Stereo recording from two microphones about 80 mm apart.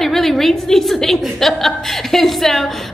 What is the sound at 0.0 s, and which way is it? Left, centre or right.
A woman's voice, centre.